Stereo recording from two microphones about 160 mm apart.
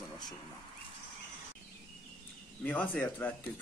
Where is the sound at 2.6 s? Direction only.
10° left (ahead or behind).